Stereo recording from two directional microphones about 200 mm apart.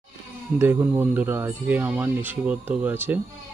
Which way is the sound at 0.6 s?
10° right (ahead or behind).